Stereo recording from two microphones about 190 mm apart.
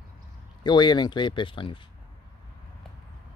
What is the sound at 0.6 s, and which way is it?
Speech, 25° left (ahead or behind).